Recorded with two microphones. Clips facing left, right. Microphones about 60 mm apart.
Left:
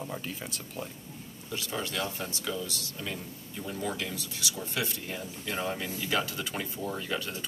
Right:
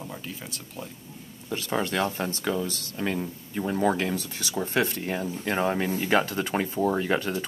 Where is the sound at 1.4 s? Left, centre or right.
Right.